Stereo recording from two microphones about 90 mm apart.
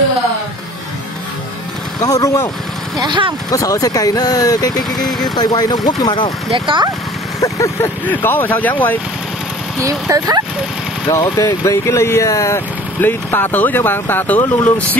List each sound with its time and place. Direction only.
2.0 s speech: 45° left (ahead or behind)
3.0 s speech: 65° right (ahead or behind)
3.4 s speech: 40° left (ahead or behind)
6.5 s speech: 65° right (ahead or behind)
7.3 s a sound: 40° left (ahead or behind)
8.1 s speech: 20° left (ahead or behind)
9.8 s speech: 40° right (ahead or behind)
11.1 s speech: 35° left (ahead or behind)